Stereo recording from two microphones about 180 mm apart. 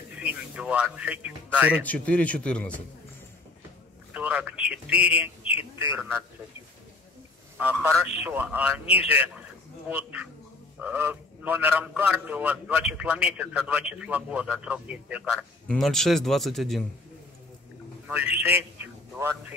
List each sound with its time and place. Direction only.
0.2 s a man's voice: 10° right (ahead or behind)
1.8 s a man's voice: 10° left (ahead or behind)
4.1 s a man's voice: 5° right (ahead or behind)
7.5 s a man's voice: 10° right (ahead or behind)
18.3 s a man's voice: 10° right (ahead or behind)